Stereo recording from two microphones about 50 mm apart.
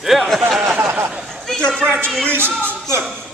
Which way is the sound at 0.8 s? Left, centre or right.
Right.